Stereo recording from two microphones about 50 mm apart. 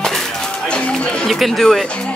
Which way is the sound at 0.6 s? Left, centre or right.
Centre.